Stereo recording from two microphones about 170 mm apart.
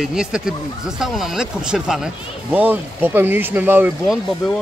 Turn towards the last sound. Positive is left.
turn(degrees=0)  # may be behind; listen again after turning